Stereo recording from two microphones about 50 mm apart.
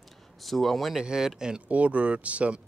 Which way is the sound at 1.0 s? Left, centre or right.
Centre.